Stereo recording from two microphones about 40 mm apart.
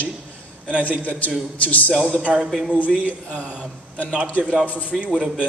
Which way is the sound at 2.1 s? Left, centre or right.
Right.